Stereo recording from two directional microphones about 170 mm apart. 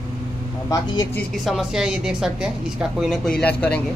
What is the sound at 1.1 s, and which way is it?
A woman's voice, centre (ahead or behind).